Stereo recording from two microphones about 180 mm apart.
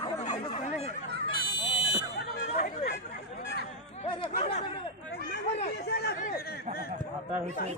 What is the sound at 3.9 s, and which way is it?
Speech, 30° left (ahead or behind).